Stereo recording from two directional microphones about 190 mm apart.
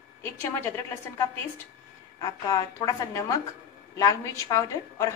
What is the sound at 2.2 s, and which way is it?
A woman's voice, 20° left (ahead or behind).